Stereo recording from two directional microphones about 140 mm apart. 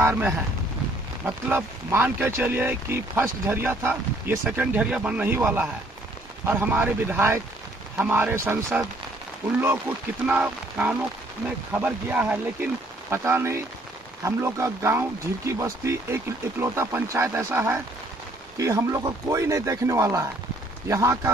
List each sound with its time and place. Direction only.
0.0 s speech: 15° right (ahead or behind)